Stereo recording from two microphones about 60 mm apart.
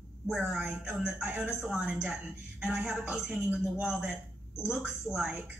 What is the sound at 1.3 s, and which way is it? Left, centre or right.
A woman's voice, centre.